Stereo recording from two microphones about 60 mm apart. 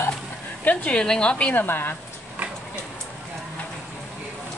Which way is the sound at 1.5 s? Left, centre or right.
Left.